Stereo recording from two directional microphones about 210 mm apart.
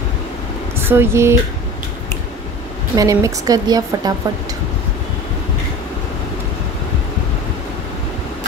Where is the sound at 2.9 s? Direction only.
15° right (ahead or behind).